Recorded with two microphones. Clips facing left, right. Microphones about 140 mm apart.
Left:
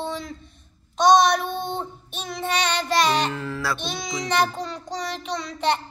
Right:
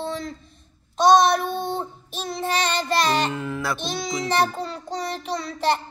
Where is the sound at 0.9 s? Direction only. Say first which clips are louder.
Right 1 dB; centre (ahead or behind).